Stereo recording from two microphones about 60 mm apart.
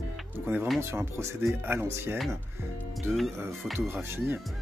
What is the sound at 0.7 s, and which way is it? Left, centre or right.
Speech, right.